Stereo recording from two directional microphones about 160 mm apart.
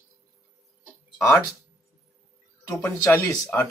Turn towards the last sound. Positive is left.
turn(degrees=15)  # may be behind; listen again after turning